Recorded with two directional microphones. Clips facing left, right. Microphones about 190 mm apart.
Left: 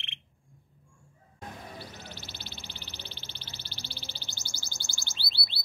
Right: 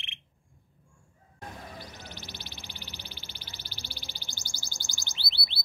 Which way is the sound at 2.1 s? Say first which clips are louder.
Right 1 dB; 15° right (ahead or behind).